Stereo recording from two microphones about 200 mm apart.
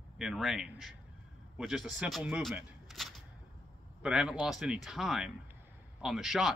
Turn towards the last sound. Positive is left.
turn(degrees=0)  # may be behind; listen again after turning